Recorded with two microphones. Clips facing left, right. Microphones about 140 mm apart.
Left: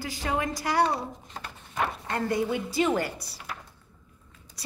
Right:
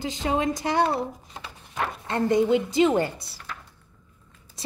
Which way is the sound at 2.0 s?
25° right (ahead or behind).